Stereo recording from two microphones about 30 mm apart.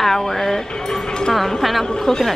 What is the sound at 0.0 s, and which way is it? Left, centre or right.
Music, centre.